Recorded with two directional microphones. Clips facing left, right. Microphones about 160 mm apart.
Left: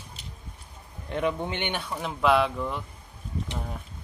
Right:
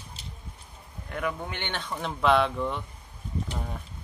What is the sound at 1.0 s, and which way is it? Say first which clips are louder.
Speech: left 4 dB; 25° left (ahead or behind).